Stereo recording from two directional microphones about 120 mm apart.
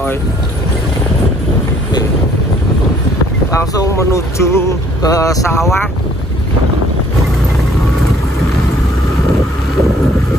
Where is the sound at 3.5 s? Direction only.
30° left (ahead or behind).